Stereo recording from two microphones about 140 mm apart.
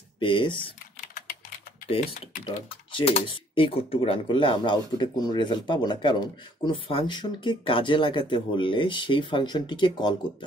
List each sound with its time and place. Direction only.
0.2 s speech: 35° left (ahead or behind)
1.0 s typing: 75° left (ahead or behind)
2.9 s speech: 40° left (ahead or behind)